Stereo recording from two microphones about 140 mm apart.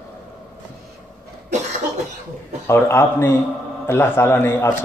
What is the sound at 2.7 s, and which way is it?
A man's voice, 20° left (ahead or behind).